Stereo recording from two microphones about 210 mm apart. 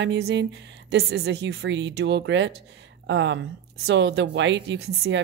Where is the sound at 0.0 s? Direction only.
55° right (ahead or behind).